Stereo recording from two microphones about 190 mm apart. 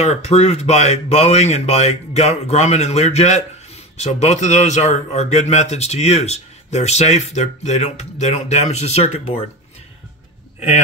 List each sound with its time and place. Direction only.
0.0 s speech: 35° left (ahead or behind)